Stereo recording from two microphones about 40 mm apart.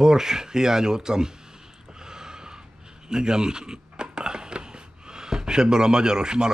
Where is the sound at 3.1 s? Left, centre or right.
Centre.